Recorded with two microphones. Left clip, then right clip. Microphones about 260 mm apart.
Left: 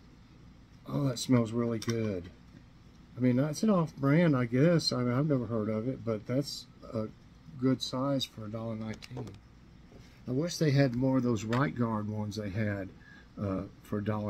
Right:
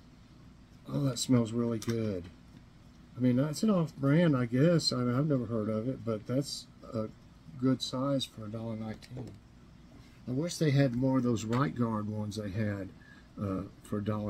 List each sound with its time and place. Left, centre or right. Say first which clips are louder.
0.8 s speech: even; centre
3.2 s speech: left 1 dB; centre
10.2 s speech: left 1 dB; centre